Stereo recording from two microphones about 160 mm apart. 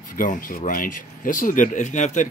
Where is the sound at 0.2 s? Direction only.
60° left (ahead or behind).